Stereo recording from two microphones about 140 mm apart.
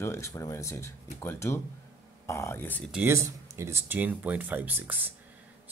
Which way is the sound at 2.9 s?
10° right (ahead or behind).